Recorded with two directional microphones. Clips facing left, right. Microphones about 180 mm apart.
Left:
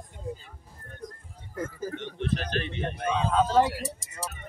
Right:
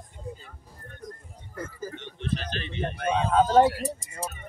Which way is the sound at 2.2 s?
55° left (ahead or behind).